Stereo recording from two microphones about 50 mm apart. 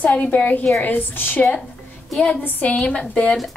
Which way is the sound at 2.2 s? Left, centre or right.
Left.